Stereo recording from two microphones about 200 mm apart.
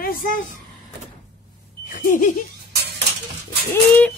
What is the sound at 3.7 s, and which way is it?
Dog, 5° left (ahead or behind).